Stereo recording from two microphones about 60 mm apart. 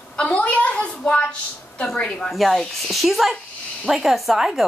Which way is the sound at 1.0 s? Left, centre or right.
Centre.